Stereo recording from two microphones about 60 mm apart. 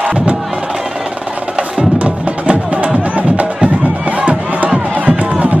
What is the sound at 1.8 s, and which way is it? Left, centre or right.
Music, right.